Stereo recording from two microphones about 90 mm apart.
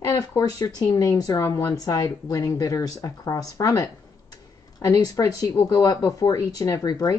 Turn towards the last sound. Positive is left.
turn(degrees=45)  # may be behind; listen again after turning